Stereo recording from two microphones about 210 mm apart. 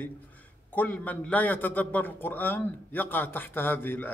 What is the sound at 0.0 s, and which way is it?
A man's voice, 10° left (ahead or behind).